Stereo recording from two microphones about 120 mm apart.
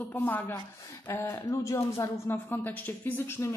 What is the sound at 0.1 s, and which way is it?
A woman's voice, 15° left (ahead or behind).